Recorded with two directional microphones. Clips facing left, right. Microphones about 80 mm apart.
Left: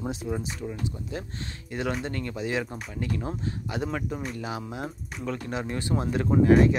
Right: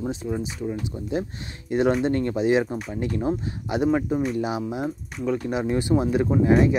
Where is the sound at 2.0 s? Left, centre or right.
Right.